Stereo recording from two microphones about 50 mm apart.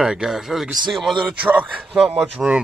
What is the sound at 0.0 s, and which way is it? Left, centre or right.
Speech, centre.